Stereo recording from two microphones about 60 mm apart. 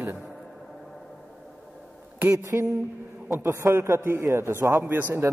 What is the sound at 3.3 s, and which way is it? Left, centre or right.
A man's voice, right.